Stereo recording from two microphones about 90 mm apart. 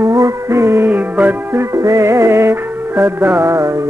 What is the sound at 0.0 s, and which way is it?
Music, 35° right (ahead or behind).